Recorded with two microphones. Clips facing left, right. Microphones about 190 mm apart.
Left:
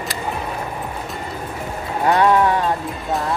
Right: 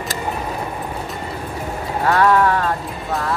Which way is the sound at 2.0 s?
20° left (ahead or behind).